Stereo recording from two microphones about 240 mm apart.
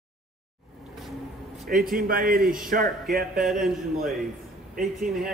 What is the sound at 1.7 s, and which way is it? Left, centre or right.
A man's voice, right.